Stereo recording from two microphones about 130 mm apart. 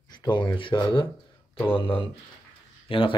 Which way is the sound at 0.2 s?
35° left (ahead or behind).